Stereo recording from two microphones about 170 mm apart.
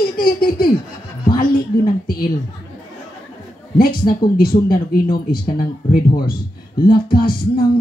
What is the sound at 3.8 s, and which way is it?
Speech, 60° left (ahead or behind).